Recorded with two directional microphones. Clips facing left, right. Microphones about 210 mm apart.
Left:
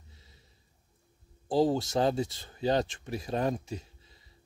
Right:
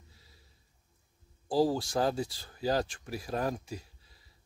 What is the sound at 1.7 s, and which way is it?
Speech, 25° left (ahead or behind).